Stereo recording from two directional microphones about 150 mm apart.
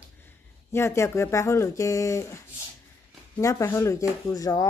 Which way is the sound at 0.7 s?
20° left (ahead or behind).